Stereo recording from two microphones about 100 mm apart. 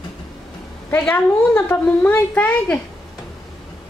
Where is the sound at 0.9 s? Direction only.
20° left (ahead or behind).